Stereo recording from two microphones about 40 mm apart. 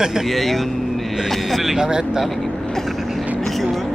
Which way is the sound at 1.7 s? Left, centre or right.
Centre.